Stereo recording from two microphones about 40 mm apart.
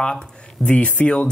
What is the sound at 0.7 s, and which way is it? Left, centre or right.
Speech, left.